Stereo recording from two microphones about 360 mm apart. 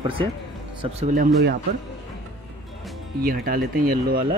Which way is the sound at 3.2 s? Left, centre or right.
Right.